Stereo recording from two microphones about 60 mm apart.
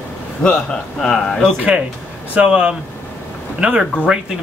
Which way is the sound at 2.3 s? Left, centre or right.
Centre.